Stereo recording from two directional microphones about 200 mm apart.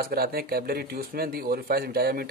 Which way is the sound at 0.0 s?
50° right (ahead or behind).